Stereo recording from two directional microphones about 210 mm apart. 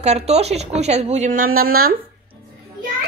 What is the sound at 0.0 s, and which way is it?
A woman's voice, 30° right (ahead or behind).